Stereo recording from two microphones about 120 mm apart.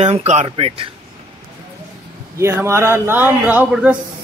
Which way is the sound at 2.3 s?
20° right (ahead or behind).